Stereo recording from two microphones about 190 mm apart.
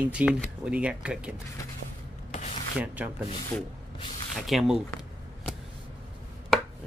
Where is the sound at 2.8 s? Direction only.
10° right (ahead or behind).